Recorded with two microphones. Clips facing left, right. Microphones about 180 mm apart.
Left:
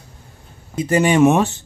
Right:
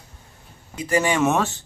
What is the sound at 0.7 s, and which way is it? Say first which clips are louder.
Speech: left 6 dB; 20° left (ahead or behind).